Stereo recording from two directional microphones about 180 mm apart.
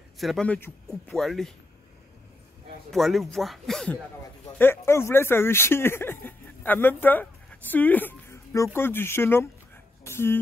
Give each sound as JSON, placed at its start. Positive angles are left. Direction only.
{"t": 0.2, "sound": "speech", "side_deg": 0}
{"t": 2.9, "sound": "speech", "side_deg": 0}